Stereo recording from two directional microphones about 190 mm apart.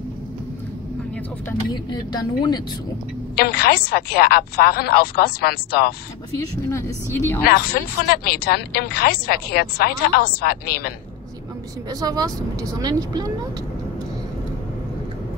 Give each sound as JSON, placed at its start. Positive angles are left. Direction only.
{"t": 1.7, "sound": "speech", "side_deg": 20}
{"t": 3.3, "sound": "speech", "side_deg": 55}
{"t": 6.7, "sound": "speech", "side_deg": 15}
{"t": 7.4, "sound": "a woman's voice", "side_deg": 50}
{"t": 11.9, "sound": "speech", "side_deg": -20}